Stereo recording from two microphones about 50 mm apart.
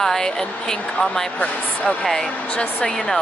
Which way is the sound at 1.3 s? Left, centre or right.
Left.